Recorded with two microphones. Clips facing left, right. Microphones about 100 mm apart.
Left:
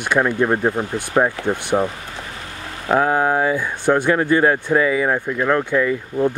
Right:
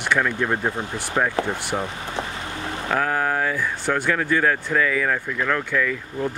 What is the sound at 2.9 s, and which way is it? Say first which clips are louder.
Speech: left 6 dB; 25° left (ahead or behind).